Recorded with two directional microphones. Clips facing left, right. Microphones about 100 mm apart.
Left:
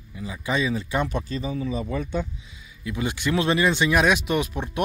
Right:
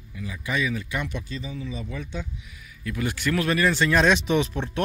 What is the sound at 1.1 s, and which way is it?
Speech, 45° left (ahead or behind).